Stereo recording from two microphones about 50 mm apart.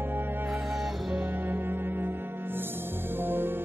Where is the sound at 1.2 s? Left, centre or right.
Right.